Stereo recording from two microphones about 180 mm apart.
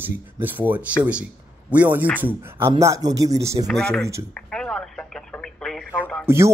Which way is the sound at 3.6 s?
5° left (ahead or behind).